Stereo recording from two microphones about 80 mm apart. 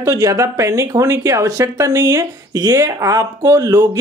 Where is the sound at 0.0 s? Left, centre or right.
Right.